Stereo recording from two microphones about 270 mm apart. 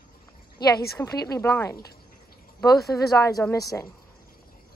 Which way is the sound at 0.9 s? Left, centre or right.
Centre.